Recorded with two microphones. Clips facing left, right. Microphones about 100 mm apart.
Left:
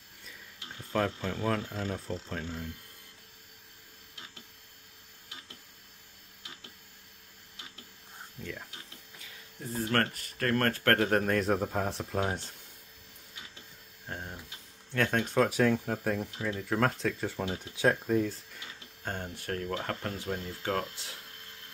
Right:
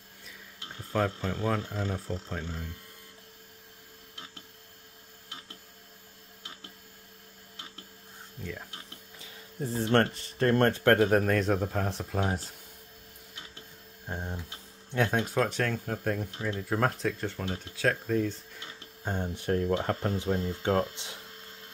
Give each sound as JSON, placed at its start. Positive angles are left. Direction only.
{"t": 0.9, "sound": "speech", "side_deg": -5}
{"t": 8.4, "sound": "a sound", "side_deg": -10}
{"t": 9.2, "sound": "speech", "side_deg": -30}
{"t": 11.1, "sound": "speech", "side_deg": 0}
{"t": 14.0, "sound": "speech", "side_deg": -15}
{"t": 15.3, "sound": "speech", "side_deg": 5}
{"t": 19.0, "sound": "speech", "side_deg": -15}